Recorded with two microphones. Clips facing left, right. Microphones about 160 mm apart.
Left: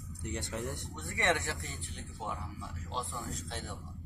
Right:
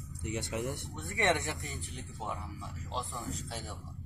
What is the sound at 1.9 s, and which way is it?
A man's voice, centre (ahead or behind).